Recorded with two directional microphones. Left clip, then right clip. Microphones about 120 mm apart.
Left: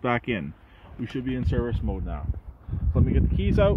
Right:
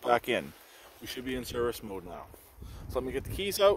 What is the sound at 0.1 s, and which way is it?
Speech, 30° right (ahead or behind).